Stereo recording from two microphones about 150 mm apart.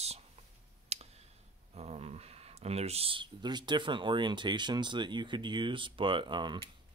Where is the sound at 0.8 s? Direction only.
45° right (ahead or behind).